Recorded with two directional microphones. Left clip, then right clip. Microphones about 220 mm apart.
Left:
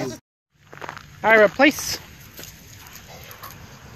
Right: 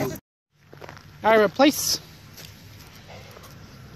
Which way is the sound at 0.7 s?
5° left (ahead or behind).